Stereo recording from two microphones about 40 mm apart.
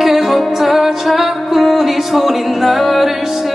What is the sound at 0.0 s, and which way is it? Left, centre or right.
Music, centre.